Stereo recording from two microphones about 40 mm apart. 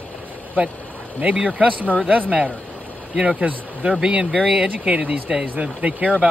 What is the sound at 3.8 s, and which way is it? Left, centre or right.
Speech, right.